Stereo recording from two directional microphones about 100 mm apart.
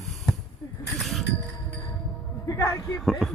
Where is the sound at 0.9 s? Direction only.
Centre (ahead or behind).